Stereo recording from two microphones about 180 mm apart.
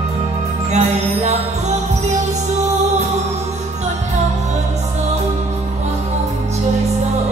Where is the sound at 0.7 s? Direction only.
40° right (ahead or behind).